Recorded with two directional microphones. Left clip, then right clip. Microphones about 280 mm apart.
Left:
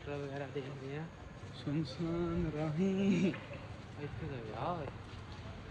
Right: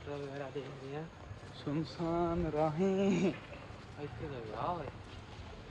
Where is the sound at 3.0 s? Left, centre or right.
Centre.